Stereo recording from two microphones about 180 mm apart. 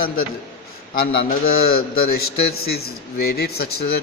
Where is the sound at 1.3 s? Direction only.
55° left (ahead or behind).